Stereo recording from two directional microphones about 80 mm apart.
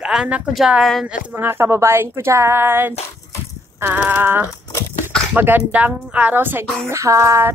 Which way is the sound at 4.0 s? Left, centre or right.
Right.